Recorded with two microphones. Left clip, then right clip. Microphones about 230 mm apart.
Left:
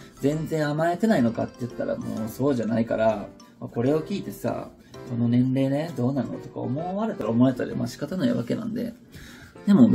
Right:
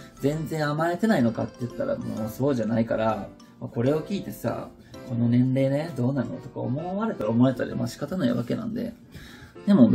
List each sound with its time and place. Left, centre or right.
0.2 s speech: centre
9.7 s speech: centre